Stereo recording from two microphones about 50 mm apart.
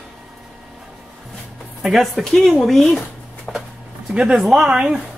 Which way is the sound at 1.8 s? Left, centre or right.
Centre.